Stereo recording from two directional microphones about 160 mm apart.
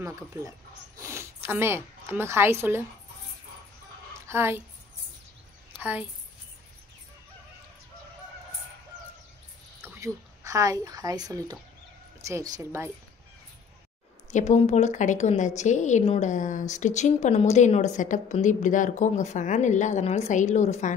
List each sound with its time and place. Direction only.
0.0 s a woman's voice: 20° right (ahead or behind)
4.3 s a woman's voice: 15° right (ahead or behind)
5.8 s a woman's voice: 10° right (ahead or behind)
9.9 s speech: 20° right (ahead or behind)
14.3 s a woman's voice: 45° left (ahead or behind)